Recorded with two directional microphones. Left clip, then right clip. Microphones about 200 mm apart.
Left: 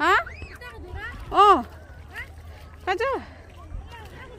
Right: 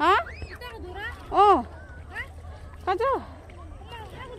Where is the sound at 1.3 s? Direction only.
15° left (ahead or behind).